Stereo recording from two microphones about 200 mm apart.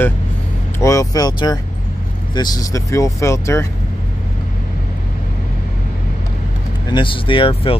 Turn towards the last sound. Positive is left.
turn(degrees=25)  # may be behind; listen again after turning